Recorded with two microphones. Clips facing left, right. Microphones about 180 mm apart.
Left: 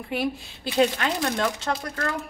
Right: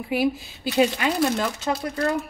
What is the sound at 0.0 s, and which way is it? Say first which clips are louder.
A woman's voice: right 4 dB; 5° right (ahead or behind).